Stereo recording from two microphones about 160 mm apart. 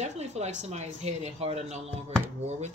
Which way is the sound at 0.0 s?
45° right (ahead or behind).